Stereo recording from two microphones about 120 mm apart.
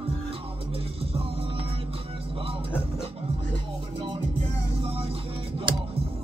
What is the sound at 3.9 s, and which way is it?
Music, 50° right (ahead or behind).